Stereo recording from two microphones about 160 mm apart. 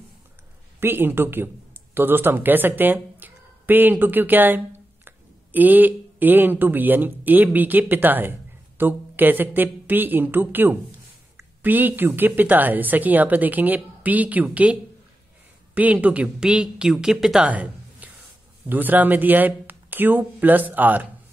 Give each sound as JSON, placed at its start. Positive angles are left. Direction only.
{"t": 0.7, "sound": "a woman's voice", "side_deg": -15}